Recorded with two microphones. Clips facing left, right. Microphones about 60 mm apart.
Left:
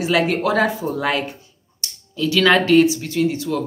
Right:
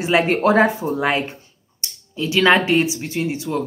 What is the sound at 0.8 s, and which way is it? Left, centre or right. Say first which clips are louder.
Speech: right 1 dB; right.